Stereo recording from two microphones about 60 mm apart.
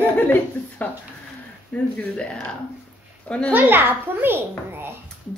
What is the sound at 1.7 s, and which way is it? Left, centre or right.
Speech, left.